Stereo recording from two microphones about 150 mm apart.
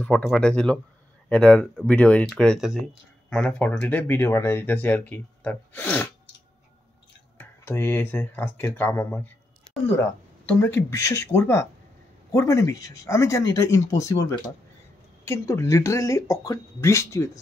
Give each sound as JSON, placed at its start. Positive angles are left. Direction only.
{"t": 0.0, "sound": "speech", "side_deg": 5}
{"t": 7.3, "sound": "speech", "side_deg": 15}
{"t": 15.2, "sound": "speech", "side_deg": 20}